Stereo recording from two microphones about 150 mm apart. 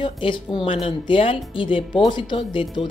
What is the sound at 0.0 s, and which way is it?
A woman's voice, 35° left (ahead or behind).